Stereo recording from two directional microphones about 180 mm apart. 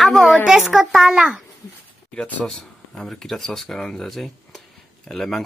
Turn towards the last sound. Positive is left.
turn(degrees=0)  # may be behind; listen again after turning